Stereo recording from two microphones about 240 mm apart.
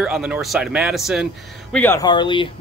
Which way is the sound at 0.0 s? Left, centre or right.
Centre.